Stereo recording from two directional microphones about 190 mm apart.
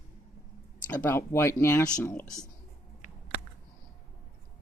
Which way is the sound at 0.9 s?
10° left (ahead or behind).